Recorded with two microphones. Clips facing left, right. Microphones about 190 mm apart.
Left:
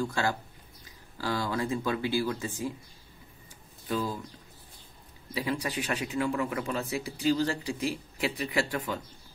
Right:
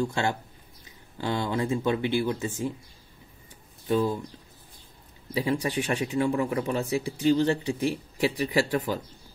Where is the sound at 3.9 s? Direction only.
30° right (ahead or behind).